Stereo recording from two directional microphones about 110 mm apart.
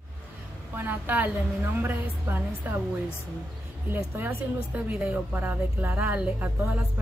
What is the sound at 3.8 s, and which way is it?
Speech, 20° right (ahead or behind).